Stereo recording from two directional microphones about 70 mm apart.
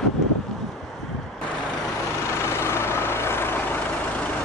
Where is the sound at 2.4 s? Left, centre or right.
Left.